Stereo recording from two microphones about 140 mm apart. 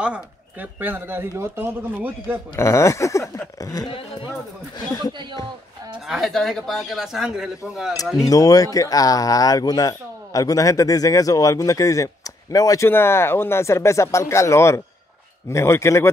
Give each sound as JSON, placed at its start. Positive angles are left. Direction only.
{"t": 0.0, "sound": "a man's voice", "side_deg": -10}
{"t": 2.5, "sound": "speech", "side_deg": 20}
{"t": 6.0, "sound": "speech", "side_deg": 0}
{"t": 8.2, "sound": "speech", "side_deg": 25}